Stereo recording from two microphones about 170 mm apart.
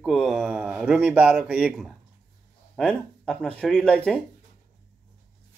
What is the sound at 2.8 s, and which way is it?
Speech, 5° left (ahead or behind).